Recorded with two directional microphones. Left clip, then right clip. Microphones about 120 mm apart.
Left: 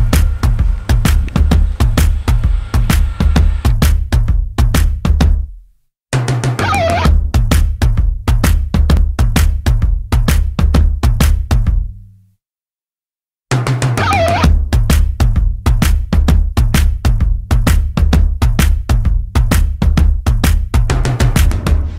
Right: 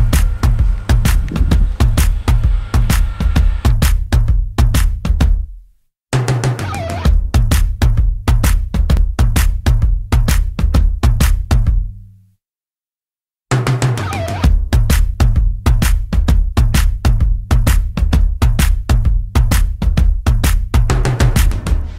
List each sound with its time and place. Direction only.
0.1 s music: 40° left (ahead or behind)
13.5 s music: 45° left (ahead or behind)